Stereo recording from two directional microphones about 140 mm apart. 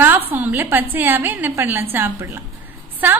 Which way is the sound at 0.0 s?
15° right (ahead or behind).